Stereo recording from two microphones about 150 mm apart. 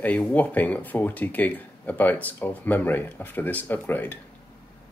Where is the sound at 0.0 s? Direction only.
10° left (ahead or behind).